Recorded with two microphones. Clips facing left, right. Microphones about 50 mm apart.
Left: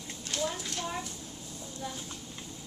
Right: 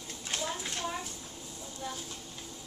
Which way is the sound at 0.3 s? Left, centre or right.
Right.